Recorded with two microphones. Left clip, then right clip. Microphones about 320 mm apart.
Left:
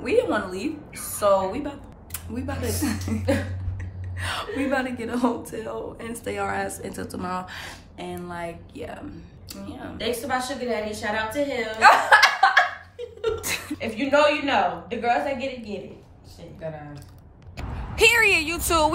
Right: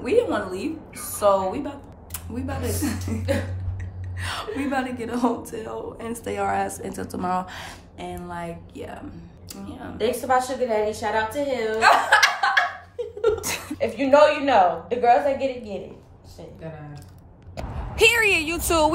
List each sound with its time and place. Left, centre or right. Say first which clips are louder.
0.0 s a woman's voice: right 1 dB; centre
4.2 s a woman's voice: left 1 dB; centre
9.9 s a woman's voice: right 5 dB; right
11.7 s speech: left 2 dB; centre
12.9 s a sound: right 5 dB; right
13.4 s laughter: even; centre
13.7 s a woman's voice: right 5 dB; right
17.7 s a woman's voice: even; centre